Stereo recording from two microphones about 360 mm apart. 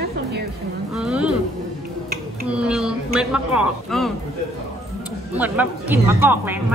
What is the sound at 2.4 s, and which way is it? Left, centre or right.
Speech, centre.